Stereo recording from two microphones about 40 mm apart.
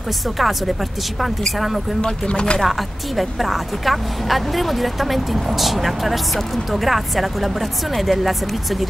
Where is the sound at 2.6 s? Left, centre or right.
Centre.